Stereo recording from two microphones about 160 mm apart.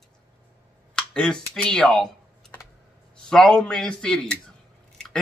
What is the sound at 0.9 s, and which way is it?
A man's voice, 5° left (ahead or behind).